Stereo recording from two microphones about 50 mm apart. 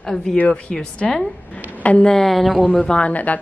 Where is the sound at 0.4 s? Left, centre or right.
Left.